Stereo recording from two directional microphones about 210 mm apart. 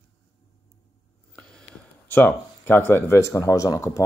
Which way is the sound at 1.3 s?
5° left (ahead or behind).